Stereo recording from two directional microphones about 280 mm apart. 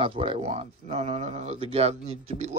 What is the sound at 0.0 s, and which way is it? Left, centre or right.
Speech, centre.